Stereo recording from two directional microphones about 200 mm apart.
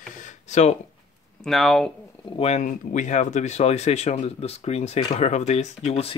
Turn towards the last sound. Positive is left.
turn(degrees=30)  # may be behind; listen again after turning